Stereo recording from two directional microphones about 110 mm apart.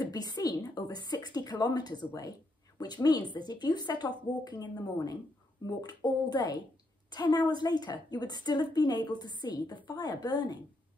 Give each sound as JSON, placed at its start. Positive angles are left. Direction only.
{"t": 0.0, "sound": "a woman's voice", "side_deg": 35}